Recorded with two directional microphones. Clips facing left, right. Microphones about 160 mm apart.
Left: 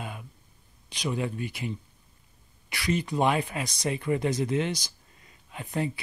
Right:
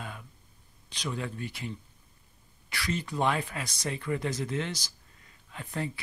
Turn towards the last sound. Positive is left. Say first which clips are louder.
# left 5 dB
turn(degrees=15)  # may be behind; listen again after turning